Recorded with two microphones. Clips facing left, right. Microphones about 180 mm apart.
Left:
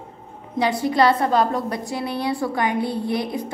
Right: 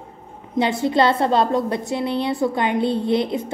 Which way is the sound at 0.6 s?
25° right (ahead or behind).